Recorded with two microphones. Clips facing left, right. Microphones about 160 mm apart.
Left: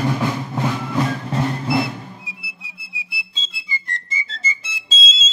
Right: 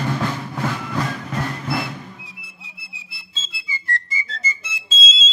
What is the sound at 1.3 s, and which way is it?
Music, 30° left (ahead or behind).